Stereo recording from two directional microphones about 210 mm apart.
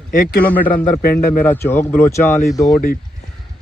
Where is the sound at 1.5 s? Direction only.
10° left (ahead or behind).